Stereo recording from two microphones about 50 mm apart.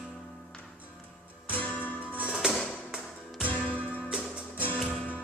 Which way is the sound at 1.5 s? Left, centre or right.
Left.